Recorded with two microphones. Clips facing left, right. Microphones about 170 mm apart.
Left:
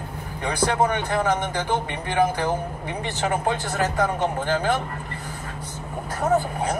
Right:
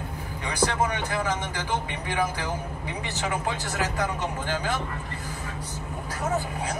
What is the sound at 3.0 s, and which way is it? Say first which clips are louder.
A man's voice: left 5 dB; 50° left (ahead or behind).